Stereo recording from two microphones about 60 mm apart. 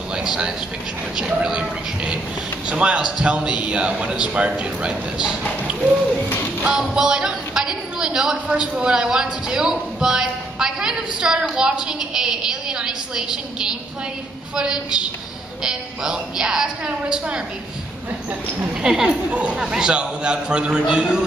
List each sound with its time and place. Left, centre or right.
0.1 s speech: centre
2.7 s a man's voice: centre
6.6 s a woman's voice: centre
18.8 s a man's voice: centre